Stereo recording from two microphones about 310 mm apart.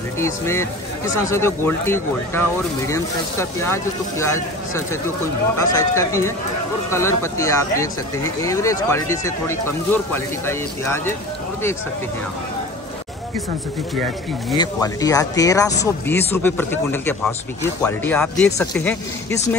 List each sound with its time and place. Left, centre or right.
0.2 s speech: centre
14.6 s speech: centre